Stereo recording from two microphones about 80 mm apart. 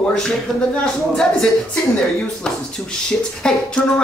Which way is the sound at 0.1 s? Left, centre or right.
Centre.